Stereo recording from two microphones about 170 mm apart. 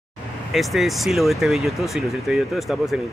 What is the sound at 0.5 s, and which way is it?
Speech, centre (ahead or behind).